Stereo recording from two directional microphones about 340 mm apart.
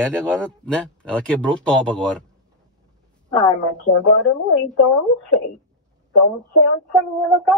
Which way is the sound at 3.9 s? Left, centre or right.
Left.